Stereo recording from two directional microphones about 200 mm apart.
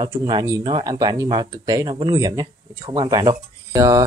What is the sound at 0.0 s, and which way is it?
Speech, 20° right (ahead or behind).